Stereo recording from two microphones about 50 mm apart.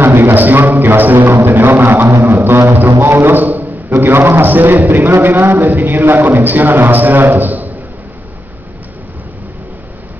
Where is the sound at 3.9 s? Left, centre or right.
Right.